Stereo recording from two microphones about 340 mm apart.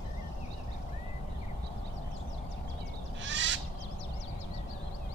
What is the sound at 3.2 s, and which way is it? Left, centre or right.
Owl, right.